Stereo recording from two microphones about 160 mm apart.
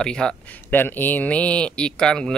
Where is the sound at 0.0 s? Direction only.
5° left (ahead or behind).